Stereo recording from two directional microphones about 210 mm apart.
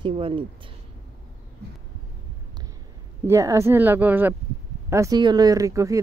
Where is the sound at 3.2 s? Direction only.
15° right (ahead or behind).